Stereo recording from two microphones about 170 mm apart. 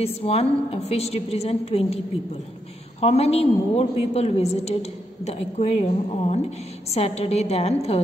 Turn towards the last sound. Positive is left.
turn(degrees=35)  # may be behind; listen again after turning